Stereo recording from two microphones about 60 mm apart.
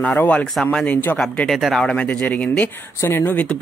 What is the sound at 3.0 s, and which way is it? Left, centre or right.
Speech, left.